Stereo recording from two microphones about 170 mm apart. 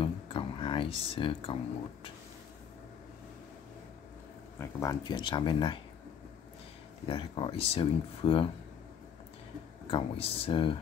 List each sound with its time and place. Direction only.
0.0 s a sound: 30° left (ahead or behind)
4.6 s speech: 20° left (ahead or behind)
7.1 s speech: 30° left (ahead or behind)
9.8 s speech: 35° left (ahead or behind)